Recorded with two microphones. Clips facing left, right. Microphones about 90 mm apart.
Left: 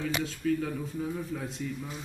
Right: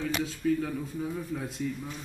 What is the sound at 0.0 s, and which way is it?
A man's voice, 5° right (ahead or behind).